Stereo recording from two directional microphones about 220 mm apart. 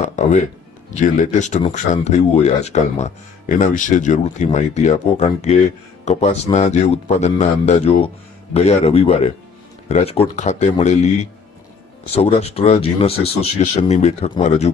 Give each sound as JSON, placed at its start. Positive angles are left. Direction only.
{"t": 0.0, "sound": "music", "side_deg": 35}
{"t": 0.9, "sound": "speech", "side_deg": 35}